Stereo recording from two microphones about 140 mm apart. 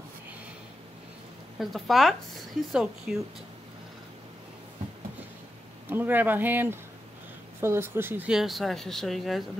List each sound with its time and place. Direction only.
1.6 s speech: centre (ahead or behind)
5.9 s speech: 15° right (ahead or behind)
8.3 s speech: centre (ahead or behind)